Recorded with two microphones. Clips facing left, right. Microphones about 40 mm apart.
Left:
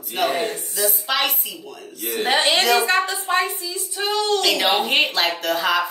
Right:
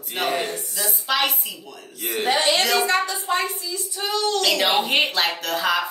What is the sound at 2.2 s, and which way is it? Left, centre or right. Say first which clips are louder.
Speech: left 2 dB; left.